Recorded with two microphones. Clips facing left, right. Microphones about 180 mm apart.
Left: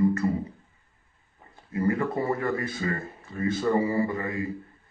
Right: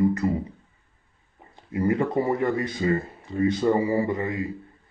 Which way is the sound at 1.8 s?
20° right (ahead or behind).